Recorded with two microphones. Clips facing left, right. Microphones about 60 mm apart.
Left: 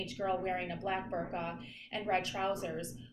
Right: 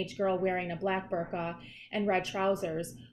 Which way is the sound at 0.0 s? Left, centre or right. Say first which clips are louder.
Right 5 dB; right.